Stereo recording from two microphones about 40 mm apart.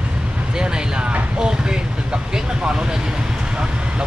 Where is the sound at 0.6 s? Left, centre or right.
Right.